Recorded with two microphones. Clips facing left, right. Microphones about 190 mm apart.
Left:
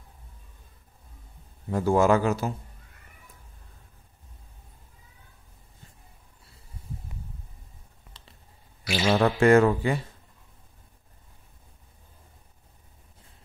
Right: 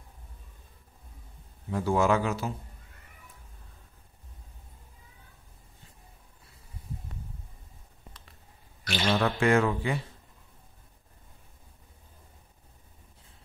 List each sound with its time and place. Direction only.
1.7 s speech: 45° left (ahead or behind)
8.8 s a sound: 10° left (ahead or behind)
9.4 s speech: 45° left (ahead or behind)